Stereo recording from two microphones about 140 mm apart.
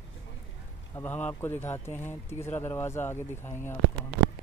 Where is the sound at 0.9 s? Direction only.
15° left (ahead or behind).